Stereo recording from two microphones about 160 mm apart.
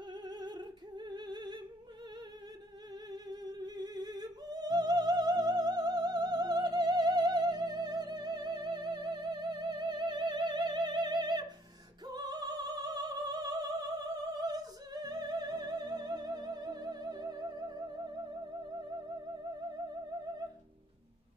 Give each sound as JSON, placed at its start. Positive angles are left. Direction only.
{"t": 0.1, "sound": "a sound", "side_deg": -25}
{"t": 3.1, "sound": "music", "side_deg": -25}
{"t": 12.1, "sound": "opera", "side_deg": -25}